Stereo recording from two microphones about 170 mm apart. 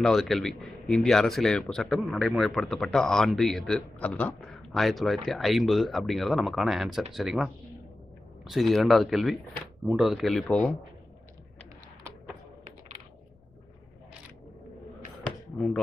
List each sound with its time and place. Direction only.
0.0 s speech: centre (ahead or behind)
15.5 s speech: centre (ahead or behind)